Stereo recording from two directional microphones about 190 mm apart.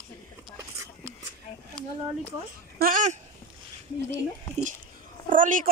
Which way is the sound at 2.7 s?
45° right (ahead or behind).